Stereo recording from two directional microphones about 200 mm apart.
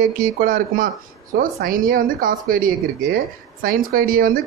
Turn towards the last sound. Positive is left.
turn(degrees=-45)  # may be behind; listen again after turning